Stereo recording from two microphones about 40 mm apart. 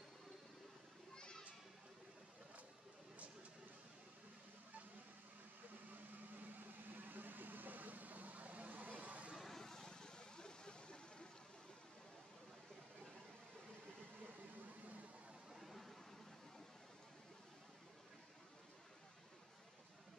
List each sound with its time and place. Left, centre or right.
1.1 s children playing: left
6.9 s vehicle: right
9.4 s vehicle: centre
15.5 s a sound: centre